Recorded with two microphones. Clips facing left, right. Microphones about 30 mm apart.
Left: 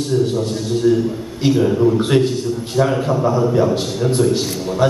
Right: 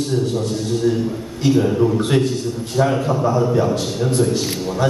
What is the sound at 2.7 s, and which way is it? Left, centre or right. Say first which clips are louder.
A man's voice: left 1 dB; centre.